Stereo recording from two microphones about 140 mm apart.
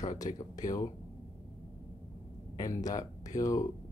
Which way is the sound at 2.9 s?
25° left (ahead or behind).